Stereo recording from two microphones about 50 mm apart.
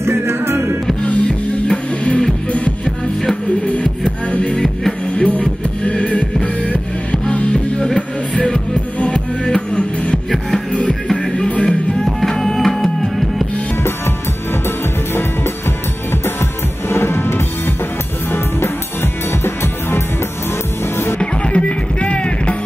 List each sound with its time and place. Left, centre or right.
0.0 s music: right
1.0 s music: left
9.1 s music: centre
11.1 s music: centre
12.0 s music: centre
16.1 s music: left
16.9 s drum kit: left
19.4 s music: left
21.2 s music: left